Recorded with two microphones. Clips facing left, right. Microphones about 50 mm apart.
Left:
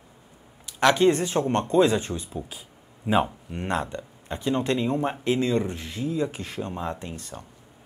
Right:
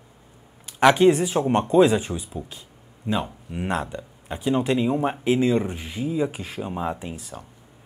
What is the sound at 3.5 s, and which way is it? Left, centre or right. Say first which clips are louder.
A man's voice: right 2 dB; centre.